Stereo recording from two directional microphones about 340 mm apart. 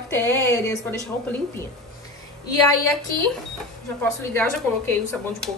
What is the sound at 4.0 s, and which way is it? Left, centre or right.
Speech, centre.